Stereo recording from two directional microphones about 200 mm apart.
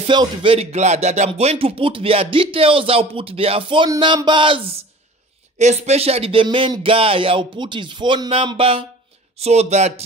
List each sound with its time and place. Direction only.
0.0 s speech: 25° right (ahead or behind)